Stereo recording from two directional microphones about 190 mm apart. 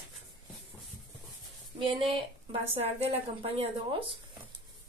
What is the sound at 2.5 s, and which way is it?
A woman's voice, 30° right (ahead or behind).